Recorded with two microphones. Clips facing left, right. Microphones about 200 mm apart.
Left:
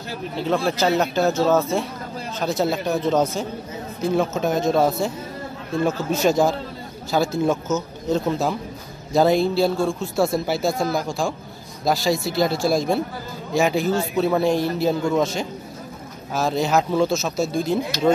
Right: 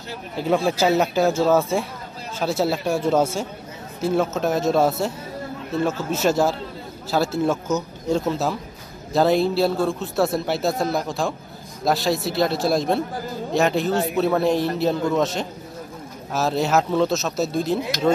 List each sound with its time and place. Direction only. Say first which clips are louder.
0.7 s a man's voice: right 1 dB; 5° right (ahead or behind)